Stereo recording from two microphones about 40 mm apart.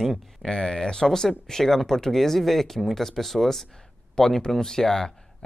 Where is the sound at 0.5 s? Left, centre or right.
Centre.